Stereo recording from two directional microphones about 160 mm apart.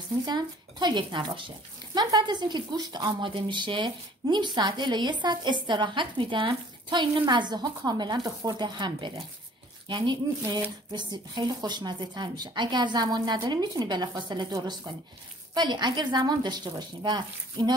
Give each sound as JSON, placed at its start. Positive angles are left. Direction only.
{"t": 0.2, "sound": "a woman's voice", "side_deg": -25}